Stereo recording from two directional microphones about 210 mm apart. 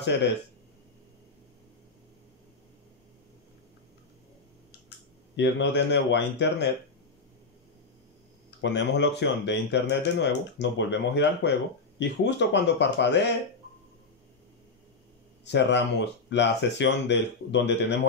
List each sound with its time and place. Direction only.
0.0 s speech: 55° left (ahead or behind)
4.8 s speech: 55° left (ahead or behind)
8.5 s speech: 55° left (ahead or behind)
15.4 s speech: 55° left (ahead or behind)